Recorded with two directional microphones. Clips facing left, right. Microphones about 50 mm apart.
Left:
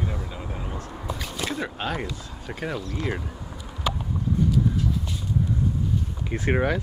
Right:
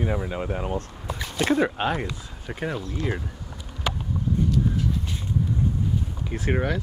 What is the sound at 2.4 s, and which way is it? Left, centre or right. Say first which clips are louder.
Speech: right 2 dB; centre.